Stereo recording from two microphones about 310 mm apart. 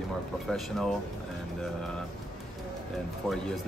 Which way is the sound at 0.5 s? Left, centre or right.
Centre.